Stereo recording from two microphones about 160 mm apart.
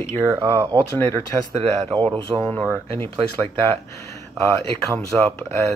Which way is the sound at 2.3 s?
15° right (ahead or behind).